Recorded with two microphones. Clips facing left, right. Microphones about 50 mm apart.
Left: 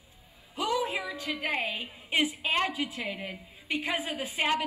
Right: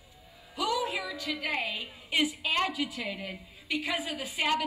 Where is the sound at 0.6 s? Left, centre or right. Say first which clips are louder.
Left 1 dB; left.